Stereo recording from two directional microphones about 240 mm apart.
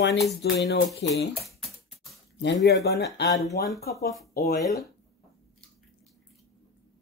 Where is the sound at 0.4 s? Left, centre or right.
Left.